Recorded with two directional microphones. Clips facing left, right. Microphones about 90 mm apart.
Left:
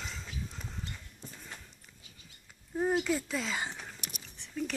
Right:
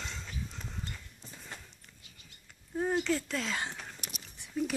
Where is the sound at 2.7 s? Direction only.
10° left (ahead or behind).